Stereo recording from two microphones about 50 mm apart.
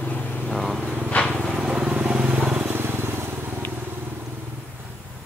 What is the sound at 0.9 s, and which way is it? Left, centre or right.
Vehicle, left.